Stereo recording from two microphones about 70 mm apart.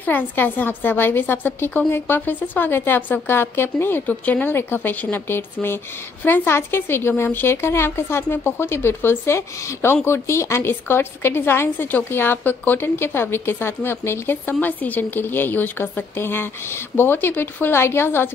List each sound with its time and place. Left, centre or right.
0.0 s a woman's voice: left